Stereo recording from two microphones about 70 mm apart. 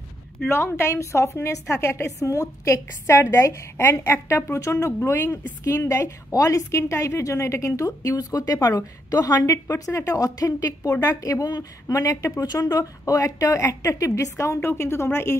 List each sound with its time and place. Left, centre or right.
0.5 s a woman's voice: left
5.6 s a woman's voice: left